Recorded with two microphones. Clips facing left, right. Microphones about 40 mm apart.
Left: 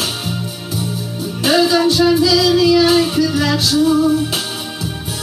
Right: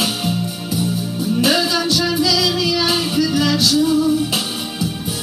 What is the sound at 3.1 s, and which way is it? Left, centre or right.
Music, left.